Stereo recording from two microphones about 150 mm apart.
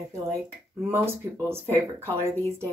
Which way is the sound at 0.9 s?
15° right (ahead or behind).